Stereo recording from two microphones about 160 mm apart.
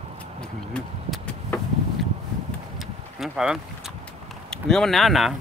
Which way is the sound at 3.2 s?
5° right (ahead or behind).